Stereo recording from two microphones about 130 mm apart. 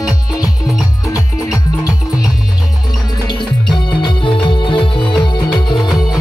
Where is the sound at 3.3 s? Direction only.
40° left (ahead or behind).